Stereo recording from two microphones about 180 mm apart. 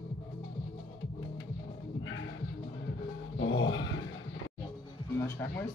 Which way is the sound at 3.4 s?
90° left.